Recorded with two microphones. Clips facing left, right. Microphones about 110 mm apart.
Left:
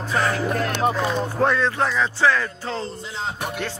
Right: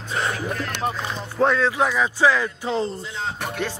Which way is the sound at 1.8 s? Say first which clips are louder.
Right 1 dB; 10° right (ahead or behind).